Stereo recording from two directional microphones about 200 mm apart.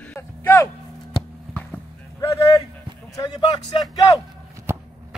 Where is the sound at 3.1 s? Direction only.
20° left (ahead or behind).